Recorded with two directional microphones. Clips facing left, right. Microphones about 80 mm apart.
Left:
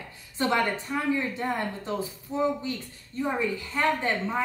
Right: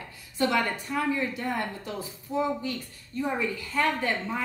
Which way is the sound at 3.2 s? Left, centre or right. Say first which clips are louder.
Left 1 dB; left.